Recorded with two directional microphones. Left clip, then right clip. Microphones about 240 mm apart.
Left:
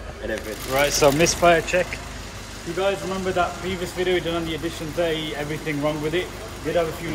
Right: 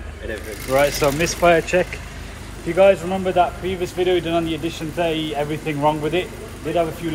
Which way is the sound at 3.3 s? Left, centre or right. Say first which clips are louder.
Right 6 dB; centre.